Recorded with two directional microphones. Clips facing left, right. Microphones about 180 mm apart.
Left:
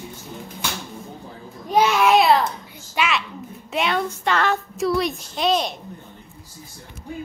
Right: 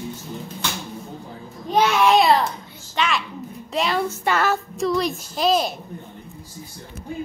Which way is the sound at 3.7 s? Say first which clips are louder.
Even; 5° right (ahead or behind).